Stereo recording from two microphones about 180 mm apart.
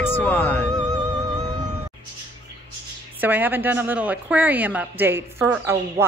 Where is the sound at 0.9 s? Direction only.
20° right (ahead or behind).